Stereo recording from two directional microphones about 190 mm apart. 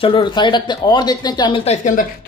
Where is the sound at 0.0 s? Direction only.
25° left (ahead or behind).